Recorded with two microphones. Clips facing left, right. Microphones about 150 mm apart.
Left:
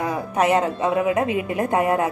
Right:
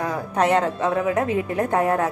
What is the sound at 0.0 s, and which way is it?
A woman's voice, 10° left (ahead or behind).